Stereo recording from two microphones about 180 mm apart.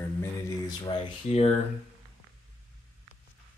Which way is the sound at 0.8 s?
35° left (ahead or behind).